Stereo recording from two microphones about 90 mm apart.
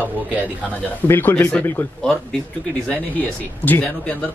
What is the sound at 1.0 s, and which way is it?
Speech, 20° left (ahead or behind).